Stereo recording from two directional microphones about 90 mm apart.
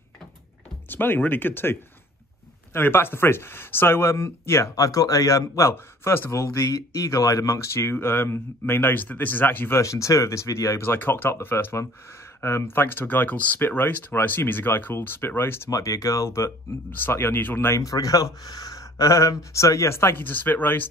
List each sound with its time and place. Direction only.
0.8 s speech: 25° left (ahead or behind)
4.7 s speech: 40° left (ahead or behind); by 6.4 s 25° left (ahead or behind)
6.4 s speech: 40° left (ahead or behind); by 9.8 s 20° left (ahead or behind)
9.8 s speech: 35° left (ahead or behind)
15.7 s speech: 35° left (ahead or behind)
17.8 s speech: 40° left (ahead or behind); by 20.9 s 20° left (ahead or behind)